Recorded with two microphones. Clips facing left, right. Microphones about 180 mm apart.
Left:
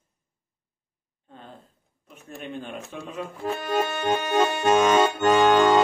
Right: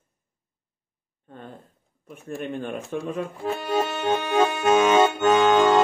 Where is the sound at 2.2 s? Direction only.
50° right (ahead or behind).